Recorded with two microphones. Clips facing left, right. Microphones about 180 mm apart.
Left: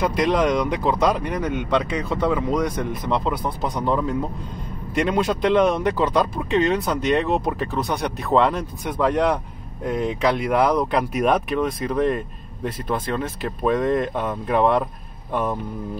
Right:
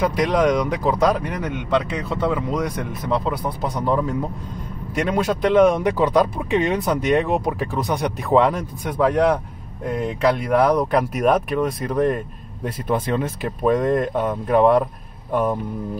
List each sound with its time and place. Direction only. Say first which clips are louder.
0.0 s speech: right 1 dB; centre (ahead or behind)
12.8 s speech: right 4 dB; 15° right (ahead or behind)